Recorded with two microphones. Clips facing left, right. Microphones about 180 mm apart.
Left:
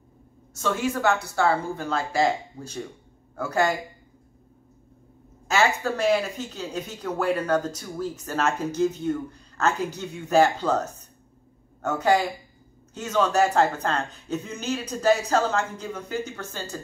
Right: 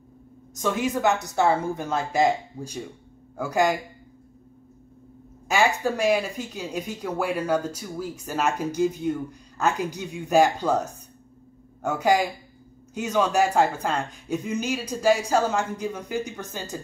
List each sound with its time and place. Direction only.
0.6 s a woman's voice: 15° right (ahead or behind)
5.5 s speech: 10° right (ahead or behind)